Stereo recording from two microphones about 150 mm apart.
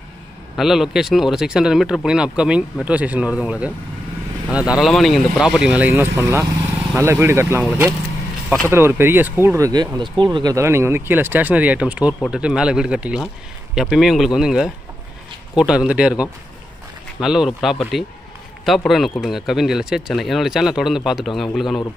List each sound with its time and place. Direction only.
0.6 s speech: 5° right (ahead or behind)
4.7 s speech: centre (ahead or behind); by 7.6 s 15° right (ahead or behind)
8.6 s speech: 15° right (ahead or behind); by 21.8 s centre (ahead or behind)